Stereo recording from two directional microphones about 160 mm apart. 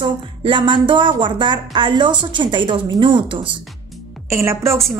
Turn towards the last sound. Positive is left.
turn(degrees=-15)  # may be behind; listen again after turning